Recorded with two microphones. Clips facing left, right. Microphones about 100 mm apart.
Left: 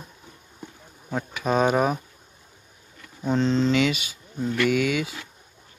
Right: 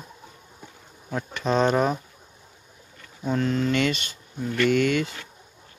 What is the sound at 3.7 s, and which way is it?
Speech, 5° left (ahead or behind).